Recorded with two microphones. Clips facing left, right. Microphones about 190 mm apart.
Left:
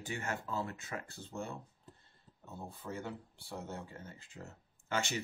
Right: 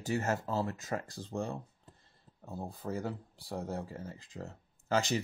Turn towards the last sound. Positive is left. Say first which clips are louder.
# right 6 dB
turn(degrees=-35)  # may be behind; listen again after turning